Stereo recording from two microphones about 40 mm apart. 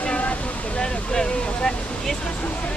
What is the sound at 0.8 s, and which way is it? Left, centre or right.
Vehicle, left.